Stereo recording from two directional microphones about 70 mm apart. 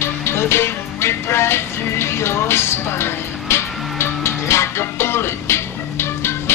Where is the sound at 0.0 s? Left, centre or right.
Left.